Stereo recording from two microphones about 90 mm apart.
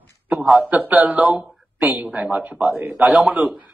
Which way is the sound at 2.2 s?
5° right (ahead or behind).